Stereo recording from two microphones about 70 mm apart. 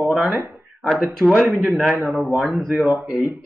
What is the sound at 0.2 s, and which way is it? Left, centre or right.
Speech, right.